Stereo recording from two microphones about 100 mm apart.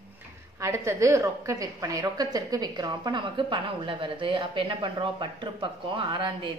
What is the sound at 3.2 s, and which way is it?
A woman's voice, 60° right (ahead or behind).